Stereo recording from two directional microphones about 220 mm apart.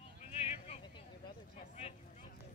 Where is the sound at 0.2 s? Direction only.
30° left (ahead or behind).